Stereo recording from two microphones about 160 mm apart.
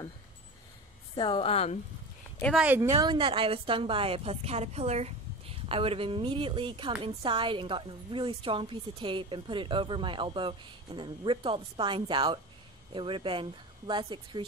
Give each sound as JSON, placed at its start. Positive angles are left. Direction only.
{"t": 1.1, "sound": "a woman's voice", "side_deg": 30}
{"t": 2.6, "sound": "speech", "side_deg": -10}
{"t": 3.0, "sound": "a woman's voice", "side_deg": -30}